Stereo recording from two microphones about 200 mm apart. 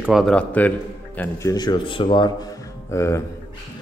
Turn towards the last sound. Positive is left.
turn(degrees=15)  # may be behind; listen again after turning